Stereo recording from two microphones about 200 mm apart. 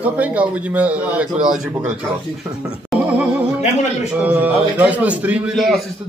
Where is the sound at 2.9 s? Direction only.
5° right (ahead or behind).